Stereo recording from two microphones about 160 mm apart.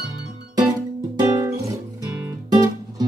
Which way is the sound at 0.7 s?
25° right (ahead or behind).